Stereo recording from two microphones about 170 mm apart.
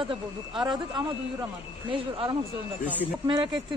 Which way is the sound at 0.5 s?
Centre (ahead or behind).